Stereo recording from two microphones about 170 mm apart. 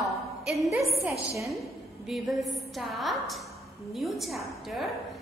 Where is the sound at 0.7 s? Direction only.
15° right (ahead or behind).